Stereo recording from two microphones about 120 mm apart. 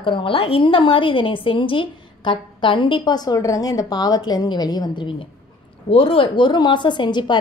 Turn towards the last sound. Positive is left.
turn(degrees=40)  # may be behind; listen again after turning